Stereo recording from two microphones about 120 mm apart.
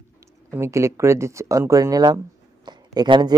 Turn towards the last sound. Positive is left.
turn(degrees=-35)  # may be behind; listen again after turning